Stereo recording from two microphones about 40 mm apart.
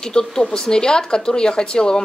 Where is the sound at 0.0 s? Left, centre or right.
Centre.